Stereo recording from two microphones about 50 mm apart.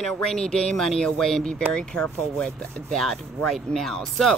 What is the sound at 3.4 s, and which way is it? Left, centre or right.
Speech, centre.